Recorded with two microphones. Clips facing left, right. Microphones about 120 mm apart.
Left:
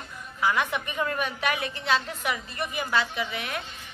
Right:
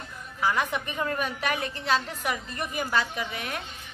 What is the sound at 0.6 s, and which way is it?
A woman's voice, 40° right (ahead or behind).